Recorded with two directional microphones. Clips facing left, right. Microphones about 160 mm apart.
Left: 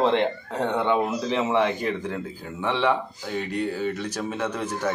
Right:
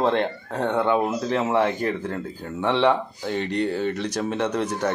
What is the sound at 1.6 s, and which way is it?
A man's voice, 10° left (ahead or behind).